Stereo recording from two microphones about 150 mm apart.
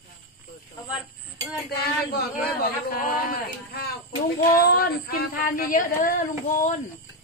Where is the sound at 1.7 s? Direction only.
85° left.